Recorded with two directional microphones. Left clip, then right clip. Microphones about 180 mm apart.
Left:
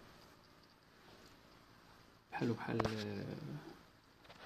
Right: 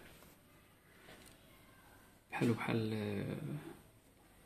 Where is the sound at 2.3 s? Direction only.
Centre (ahead or behind).